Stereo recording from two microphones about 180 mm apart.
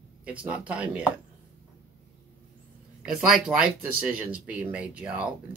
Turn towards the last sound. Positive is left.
turn(degrees=-5)  # may be behind; listen again after turning